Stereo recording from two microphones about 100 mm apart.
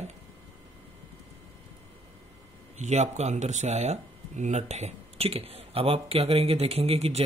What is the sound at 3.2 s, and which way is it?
Speech, 90° right.